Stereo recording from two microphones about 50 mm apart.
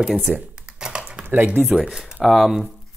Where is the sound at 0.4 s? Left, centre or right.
Centre.